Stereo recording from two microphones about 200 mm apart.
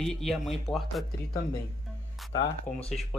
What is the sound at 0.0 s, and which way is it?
Speech, centre (ahead or behind).